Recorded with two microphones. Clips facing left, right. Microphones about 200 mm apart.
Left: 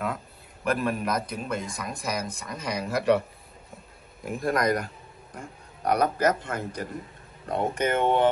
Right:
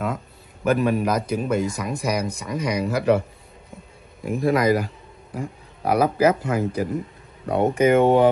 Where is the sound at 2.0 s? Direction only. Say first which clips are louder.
Right 6 dB; 65° right (ahead or behind).